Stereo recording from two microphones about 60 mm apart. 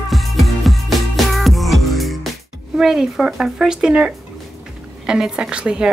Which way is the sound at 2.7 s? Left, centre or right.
Centre.